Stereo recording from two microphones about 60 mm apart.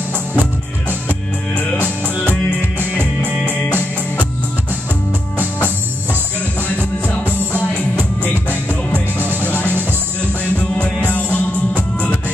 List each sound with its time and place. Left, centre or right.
6.8 s music: left
9.2 s music: right
11.3 s music: left